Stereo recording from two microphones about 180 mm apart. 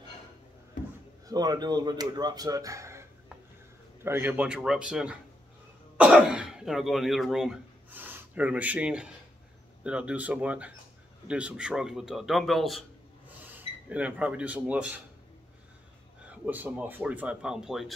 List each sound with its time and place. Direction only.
1.2 s a man's voice: 20° right (ahead or behind)
16.3 s speech: 10° right (ahead or behind)